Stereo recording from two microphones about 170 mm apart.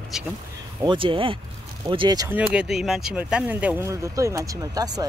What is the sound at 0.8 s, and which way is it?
Speech, 30° right (ahead or behind).